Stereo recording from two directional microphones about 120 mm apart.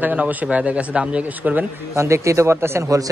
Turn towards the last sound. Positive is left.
turn(degrees=-25)  # may be behind; listen again after turning